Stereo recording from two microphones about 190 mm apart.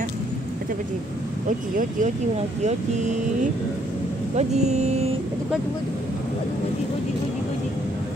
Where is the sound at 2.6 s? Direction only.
40° right (ahead or behind).